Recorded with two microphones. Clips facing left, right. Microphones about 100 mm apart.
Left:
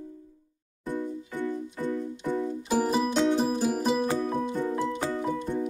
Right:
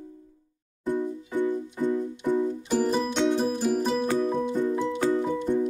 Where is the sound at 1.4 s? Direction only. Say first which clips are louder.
Right 4 dB; 15° right (ahead or behind).